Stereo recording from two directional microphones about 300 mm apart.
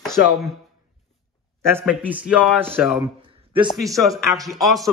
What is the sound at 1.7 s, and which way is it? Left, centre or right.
Speech, centre.